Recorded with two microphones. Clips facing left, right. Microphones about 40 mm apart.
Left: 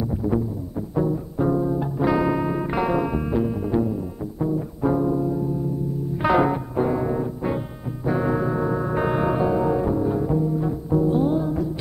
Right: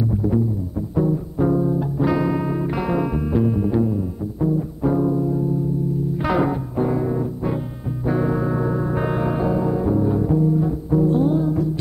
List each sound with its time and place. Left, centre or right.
0.2 s music: right
0.9 s music: centre